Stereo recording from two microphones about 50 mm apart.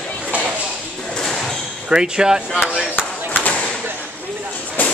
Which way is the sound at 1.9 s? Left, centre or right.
Centre.